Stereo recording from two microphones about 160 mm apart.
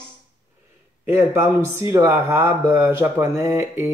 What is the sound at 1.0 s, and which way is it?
Speech, 15° right (ahead or behind).